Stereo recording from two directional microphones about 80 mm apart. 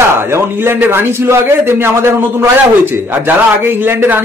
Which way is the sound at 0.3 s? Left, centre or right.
Right.